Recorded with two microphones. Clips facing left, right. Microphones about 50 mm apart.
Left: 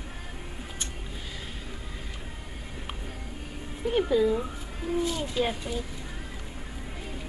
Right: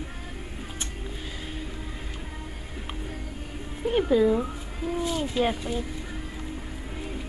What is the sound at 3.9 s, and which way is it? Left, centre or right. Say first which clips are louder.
Speech: right 2 dB; centre.